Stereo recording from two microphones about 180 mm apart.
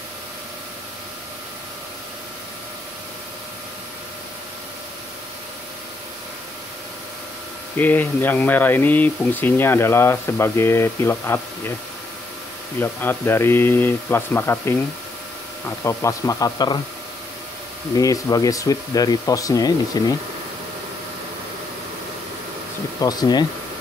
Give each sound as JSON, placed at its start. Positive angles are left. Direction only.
{"t": 7.7, "sound": "speech", "side_deg": 10}
{"t": 12.8, "sound": "speech", "side_deg": 10}
{"t": 17.9, "sound": "speech", "side_deg": 20}
{"t": 22.9, "sound": "speech", "side_deg": 20}